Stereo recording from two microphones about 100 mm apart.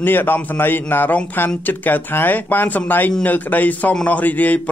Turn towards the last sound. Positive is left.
turn(degrees=15)  # may be behind; listen again after turning